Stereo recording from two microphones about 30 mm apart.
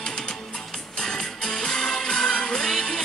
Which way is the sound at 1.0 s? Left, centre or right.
Left.